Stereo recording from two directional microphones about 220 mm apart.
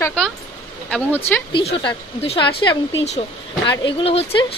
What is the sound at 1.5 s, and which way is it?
Speech, 25° left (ahead or behind).